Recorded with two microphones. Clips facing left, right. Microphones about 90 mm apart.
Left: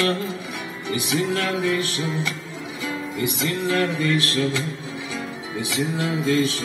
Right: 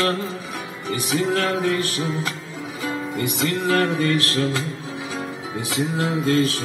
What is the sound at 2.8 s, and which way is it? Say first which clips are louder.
Music: right 1 dB; 55° right (ahead or behind).